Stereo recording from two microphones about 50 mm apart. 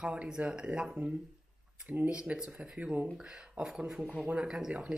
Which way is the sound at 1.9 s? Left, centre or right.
Right.